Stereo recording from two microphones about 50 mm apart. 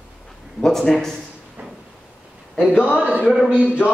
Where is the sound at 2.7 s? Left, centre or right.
Left.